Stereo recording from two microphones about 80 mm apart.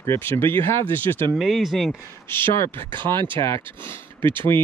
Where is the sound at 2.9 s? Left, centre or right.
Right.